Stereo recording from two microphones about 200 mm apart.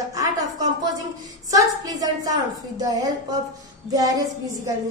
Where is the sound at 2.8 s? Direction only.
20° right (ahead or behind).